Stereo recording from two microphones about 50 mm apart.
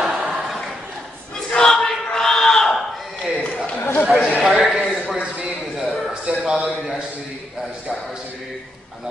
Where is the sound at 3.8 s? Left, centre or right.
Left.